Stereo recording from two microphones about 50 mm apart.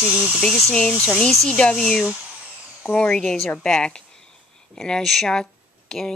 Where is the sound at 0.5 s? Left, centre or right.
Centre.